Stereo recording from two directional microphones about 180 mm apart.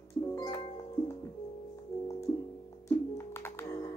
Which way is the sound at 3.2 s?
15° left (ahead or behind).